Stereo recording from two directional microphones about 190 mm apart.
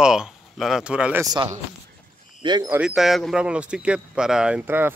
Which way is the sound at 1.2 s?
20° right (ahead or behind).